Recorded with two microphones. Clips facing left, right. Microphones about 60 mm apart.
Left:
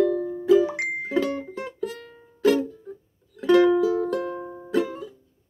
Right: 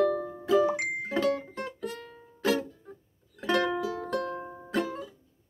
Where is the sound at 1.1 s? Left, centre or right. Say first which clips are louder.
Left 2 dB; centre.